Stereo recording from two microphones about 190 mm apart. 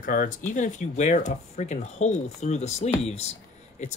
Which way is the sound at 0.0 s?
45° left (ahead or behind).